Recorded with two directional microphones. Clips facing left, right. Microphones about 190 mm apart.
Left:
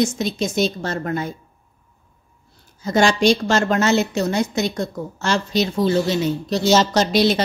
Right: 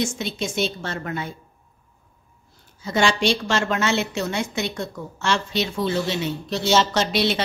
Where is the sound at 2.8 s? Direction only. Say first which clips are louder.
Left 5 dB; 40° left (ahead or behind).